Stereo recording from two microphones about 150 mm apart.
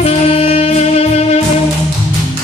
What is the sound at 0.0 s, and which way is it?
Music, 40° left (ahead or behind).